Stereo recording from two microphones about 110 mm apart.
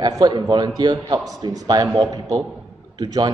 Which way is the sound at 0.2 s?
40° right (ahead or behind).